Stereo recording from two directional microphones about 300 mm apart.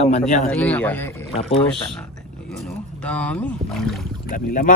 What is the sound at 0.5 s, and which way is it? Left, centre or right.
Speech, centre.